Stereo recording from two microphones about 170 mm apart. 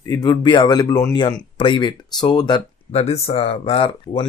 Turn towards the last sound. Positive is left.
turn(degrees=30)  # may be behind; listen again after turning